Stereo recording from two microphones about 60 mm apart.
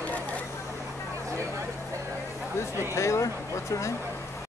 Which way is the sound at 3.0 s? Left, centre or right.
Left.